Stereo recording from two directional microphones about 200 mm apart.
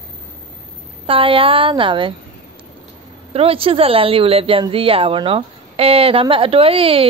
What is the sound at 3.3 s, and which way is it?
Speech, 30° right (ahead or behind).